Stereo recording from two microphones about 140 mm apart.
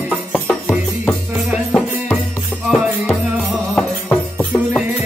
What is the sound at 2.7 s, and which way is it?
Music, 5° right (ahead or behind).